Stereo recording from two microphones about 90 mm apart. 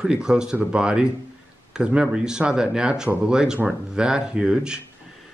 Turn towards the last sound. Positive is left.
turn(degrees=-10)  # may be behind; listen again after turning